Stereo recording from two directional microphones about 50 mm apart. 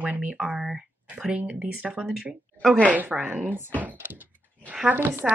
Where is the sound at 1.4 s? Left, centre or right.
Right.